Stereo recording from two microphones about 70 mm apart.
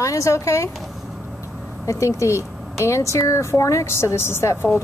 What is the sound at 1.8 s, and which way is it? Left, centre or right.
Speech, left.